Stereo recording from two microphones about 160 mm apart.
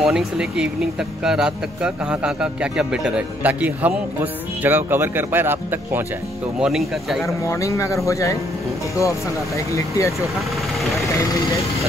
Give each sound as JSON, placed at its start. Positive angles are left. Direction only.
{"t": 0.0, "sound": "speech", "side_deg": -5}
{"t": 6.6, "sound": "speech", "side_deg": 0}
{"t": 7.4, "sound": "speech", "side_deg": 20}
{"t": 9.7, "sound": "speech", "side_deg": 20}